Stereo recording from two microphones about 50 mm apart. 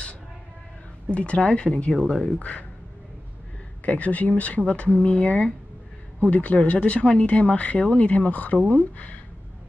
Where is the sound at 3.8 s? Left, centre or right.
Left.